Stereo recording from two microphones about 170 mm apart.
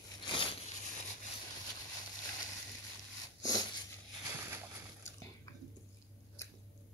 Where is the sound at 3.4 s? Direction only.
20° left (ahead or behind).